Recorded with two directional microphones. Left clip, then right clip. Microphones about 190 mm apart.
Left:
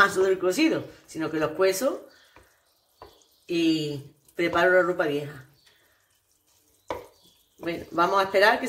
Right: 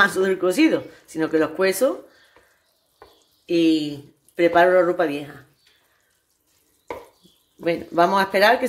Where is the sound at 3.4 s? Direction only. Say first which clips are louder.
Right 6 dB; 40° right (ahead or behind).